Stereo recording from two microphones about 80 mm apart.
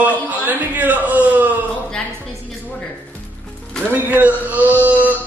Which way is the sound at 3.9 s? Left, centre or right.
Right.